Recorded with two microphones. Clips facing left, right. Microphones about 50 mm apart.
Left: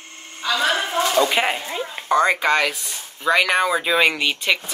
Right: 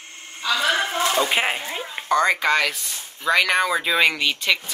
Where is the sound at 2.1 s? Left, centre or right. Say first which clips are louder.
Left 1 dB; centre.